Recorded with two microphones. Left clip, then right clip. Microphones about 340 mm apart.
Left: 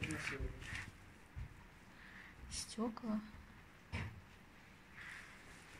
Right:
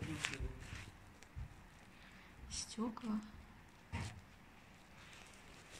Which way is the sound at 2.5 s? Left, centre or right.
Centre.